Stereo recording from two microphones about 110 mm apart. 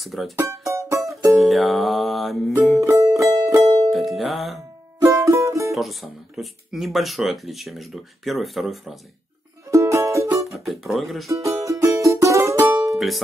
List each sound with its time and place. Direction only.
0.0 s speech: centre (ahead or behind)
0.4 s music: 25° right (ahead or behind)
1.3 s speech: centre (ahead or behind)
2.8 s music: 30° right (ahead or behind)
3.9 s music: centre (ahead or behind)
5.0 s music: 30° right (ahead or behind)
5.7 s speech: centre (ahead or behind)
9.7 s music: 25° right (ahead or behind)
10.4 s music: centre (ahead or behind)
11.2 s music: 30° right (ahead or behind)
12.9 s music: centre (ahead or behind)